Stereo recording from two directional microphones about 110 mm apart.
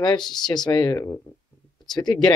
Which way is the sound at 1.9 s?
40° left (ahead or behind).